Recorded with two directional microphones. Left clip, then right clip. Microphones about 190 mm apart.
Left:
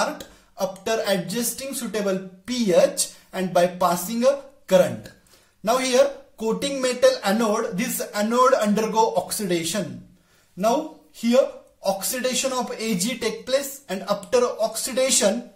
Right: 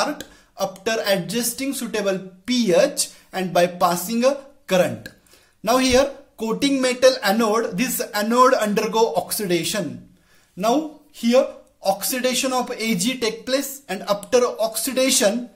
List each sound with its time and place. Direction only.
0.0 s speech: 35° right (ahead or behind)